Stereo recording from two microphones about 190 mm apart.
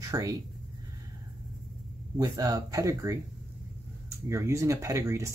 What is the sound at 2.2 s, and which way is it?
Speech, 20° right (ahead or behind).